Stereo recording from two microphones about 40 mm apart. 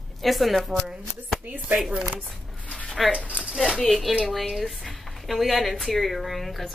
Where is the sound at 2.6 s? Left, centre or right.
Left.